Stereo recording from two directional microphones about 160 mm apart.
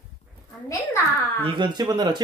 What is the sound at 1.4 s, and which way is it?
Speech, 30° right (ahead or behind).